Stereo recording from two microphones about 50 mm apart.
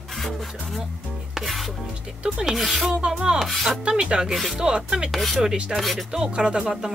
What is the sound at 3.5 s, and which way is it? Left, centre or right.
Speech, centre.